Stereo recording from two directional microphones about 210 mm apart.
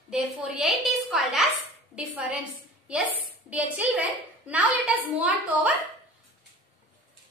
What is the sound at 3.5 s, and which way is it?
A child's voice, 5° right (ahead or behind).